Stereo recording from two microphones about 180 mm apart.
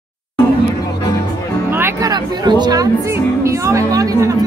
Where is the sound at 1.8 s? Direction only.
20° right (ahead or behind).